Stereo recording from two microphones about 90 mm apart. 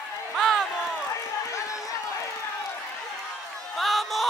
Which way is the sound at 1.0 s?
35° left (ahead or behind).